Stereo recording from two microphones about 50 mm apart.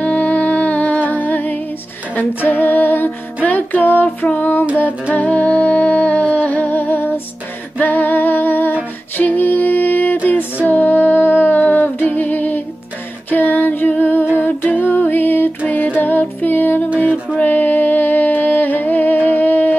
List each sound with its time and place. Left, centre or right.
0.0 s music: left
2.1 s female singing: left
3.4 s music: left
7.8 s humming: left
9.1 s music: left
13.3 s female singing: left
14.3 s humming: left
15.7 s music: left
17.0 s music: left